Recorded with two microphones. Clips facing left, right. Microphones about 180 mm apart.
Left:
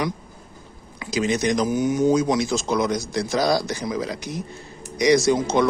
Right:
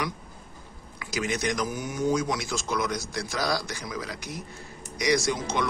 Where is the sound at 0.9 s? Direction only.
25° left (ahead or behind).